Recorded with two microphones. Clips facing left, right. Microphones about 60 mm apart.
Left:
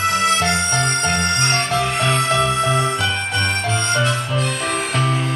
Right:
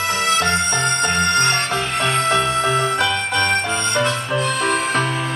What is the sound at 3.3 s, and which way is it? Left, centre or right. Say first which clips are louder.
Harmonica: right 2 dB; right.